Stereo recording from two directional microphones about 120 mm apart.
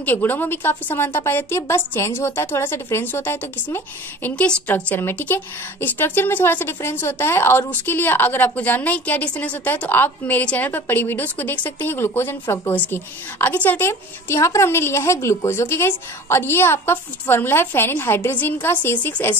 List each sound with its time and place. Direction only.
0.0 s a woman's voice: 15° left (ahead or behind)